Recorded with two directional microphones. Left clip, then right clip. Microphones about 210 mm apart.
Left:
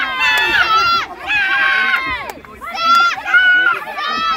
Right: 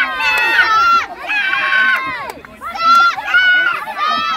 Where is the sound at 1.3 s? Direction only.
35° left (ahead or behind).